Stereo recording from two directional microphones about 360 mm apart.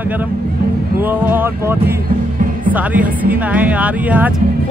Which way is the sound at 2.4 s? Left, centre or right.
Right.